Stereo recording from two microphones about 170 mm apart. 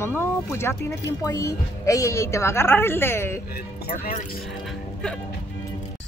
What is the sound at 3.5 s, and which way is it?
Speech, 60° left (ahead or behind).